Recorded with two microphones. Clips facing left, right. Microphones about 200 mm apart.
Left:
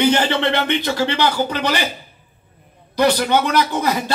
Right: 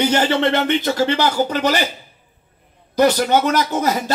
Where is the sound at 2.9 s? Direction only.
45° right (ahead or behind).